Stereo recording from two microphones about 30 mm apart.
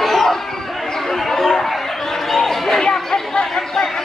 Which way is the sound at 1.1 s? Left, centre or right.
Centre.